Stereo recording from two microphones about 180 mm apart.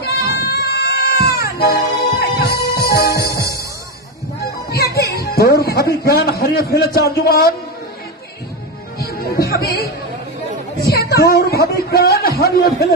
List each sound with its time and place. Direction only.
0.1 s bagpipes: 60° left (ahead or behind)
1.3 s music: 60° left (ahead or behind)
4.6 s music: 60° left (ahead or behind)
6.4 s a man's voice: 60° left (ahead or behind)
8.9 s music: 60° left (ahead or behind)
10.8 s a man's voice: 60° left (ahead or behind)